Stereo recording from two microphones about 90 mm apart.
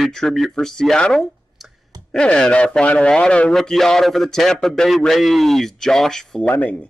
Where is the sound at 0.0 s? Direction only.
5° left (ahead or behind).